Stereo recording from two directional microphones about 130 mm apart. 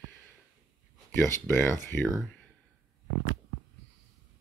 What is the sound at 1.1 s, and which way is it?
Speech, 20° left (ahead or behind).